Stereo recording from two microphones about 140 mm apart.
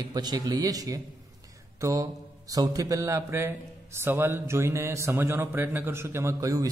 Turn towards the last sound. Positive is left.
turn(degrees=-20)  # may be behind; listen again after turning